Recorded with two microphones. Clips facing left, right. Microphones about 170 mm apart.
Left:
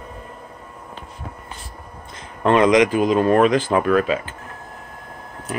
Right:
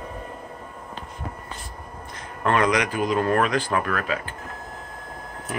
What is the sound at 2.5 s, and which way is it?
Speech, 25° left (ahead or behind).